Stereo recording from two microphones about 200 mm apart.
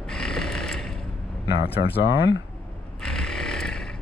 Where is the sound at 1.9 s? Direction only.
55° left (ahead or behind).